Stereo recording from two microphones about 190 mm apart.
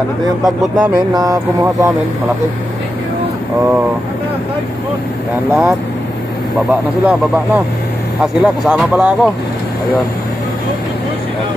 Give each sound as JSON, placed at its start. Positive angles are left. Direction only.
{"t": 0.4, "sound": "speech", "side_deg": -5}
{"t": 1.1, "sound": "speech", "side_deg": -20}
{"t": 5.5, "sound": "speech", "side_deg": 0}